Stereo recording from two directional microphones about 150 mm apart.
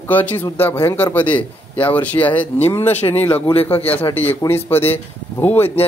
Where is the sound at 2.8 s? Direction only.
45° left (ahead or behind).